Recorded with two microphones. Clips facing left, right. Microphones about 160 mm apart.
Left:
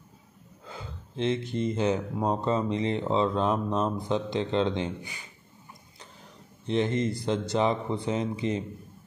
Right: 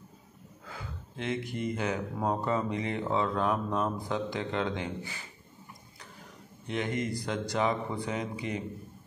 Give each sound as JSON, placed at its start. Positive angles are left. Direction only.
{"t": 0.7, "sound": "speech", "side_deg": 25}
{"t": 6.7, "sound": "speech", "side_deg": 30}